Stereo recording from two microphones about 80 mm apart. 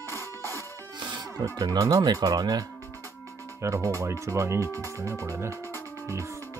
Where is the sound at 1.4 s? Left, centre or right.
Right.